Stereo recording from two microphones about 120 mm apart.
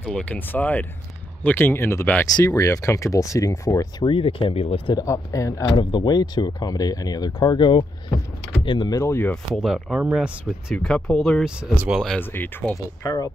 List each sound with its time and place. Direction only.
0.0 s speech: 10° left (ahead or behind); by 3.9 s 25° left (ahead or behind)
4.0 s speech: 50° left (ahead or behind)
4.9 s speech: 25° left (ahead or behind)
9.0 s speech: 20° left (ahead or behind)
9.6 s speech: 5° right (ahead or behind)
10.8 s speech: 5° left (ahead or behind)
11.7 s speech: 10° right (ahead or behind)
12.2 s speech: 15° left (ahead or behind)